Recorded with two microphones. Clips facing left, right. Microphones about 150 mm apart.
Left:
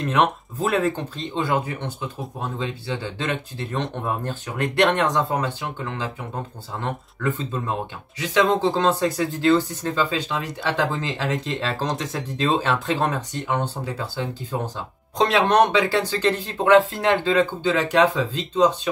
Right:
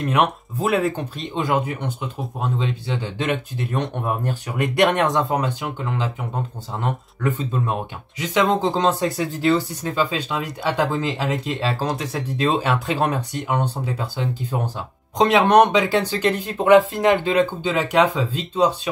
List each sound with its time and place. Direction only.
0.0 s speech: 10° right (ahead or behind)